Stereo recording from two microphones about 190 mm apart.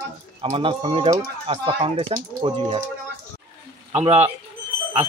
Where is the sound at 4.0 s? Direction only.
35° right (ahead or behind).